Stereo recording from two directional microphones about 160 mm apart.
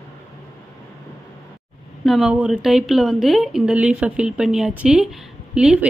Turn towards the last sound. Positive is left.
turn(degrees=-5)  # may be behind; listen again after turning